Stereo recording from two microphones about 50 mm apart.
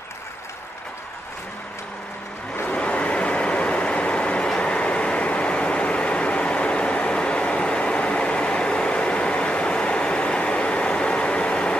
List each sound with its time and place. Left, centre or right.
2.6 s vehicle: left